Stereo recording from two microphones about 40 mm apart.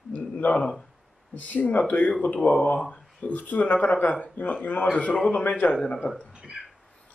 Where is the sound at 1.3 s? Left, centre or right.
Left.